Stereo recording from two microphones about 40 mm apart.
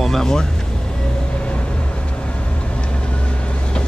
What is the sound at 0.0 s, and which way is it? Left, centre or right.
Speech, centre.